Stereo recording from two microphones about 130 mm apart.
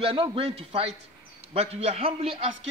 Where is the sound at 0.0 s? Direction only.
45° right (ahead or behind).